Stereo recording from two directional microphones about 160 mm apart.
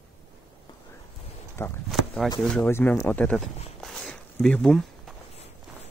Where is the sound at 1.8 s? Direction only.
Centre (ahead or behind).